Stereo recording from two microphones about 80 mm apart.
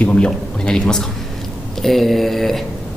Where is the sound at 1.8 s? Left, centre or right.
Centre.